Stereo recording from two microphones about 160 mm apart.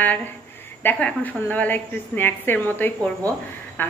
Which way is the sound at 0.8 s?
10° left (ahead or behind).